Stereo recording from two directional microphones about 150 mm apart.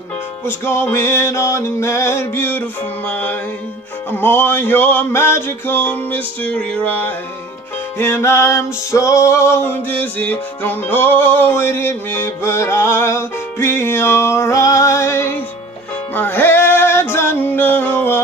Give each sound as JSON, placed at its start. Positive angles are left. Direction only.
{"t": 0.5, "sound": "music", "side_deg": 15}
{"t": 8.0, "sound": "music", "side_deg": 15}